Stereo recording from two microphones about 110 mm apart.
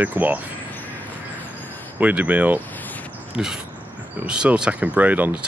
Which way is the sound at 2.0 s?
15° right (ahead or behind).